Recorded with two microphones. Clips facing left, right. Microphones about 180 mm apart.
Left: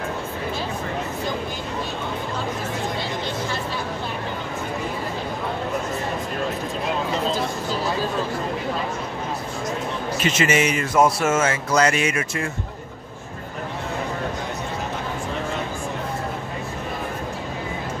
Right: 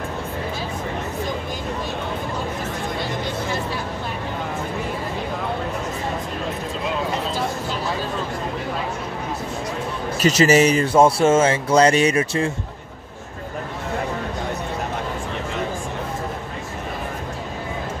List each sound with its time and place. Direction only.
10.2 s speech: 35° right (ahead or behind)